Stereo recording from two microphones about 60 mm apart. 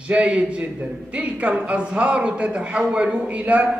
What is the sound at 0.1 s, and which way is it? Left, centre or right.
A man's voice, right.